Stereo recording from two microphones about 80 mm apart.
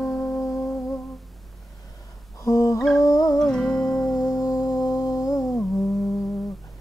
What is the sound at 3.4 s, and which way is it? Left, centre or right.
Music, centre.